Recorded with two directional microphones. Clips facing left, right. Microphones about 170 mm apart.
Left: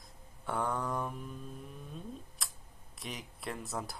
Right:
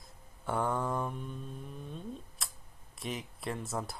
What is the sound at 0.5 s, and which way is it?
Mantra, centre (ahead or behind).